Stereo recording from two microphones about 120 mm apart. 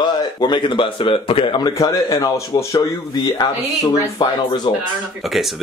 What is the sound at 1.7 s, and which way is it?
Speech, 25° left (ahead or behind).